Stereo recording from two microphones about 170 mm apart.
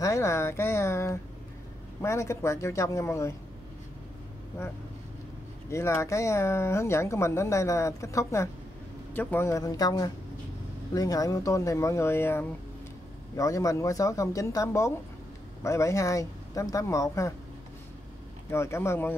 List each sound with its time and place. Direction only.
0.0 s speech: 15° left (ahead or behind)
5.7 s speech: 15° left (ahead or behind)
18.5 s speech: 15° left (ahead or behind)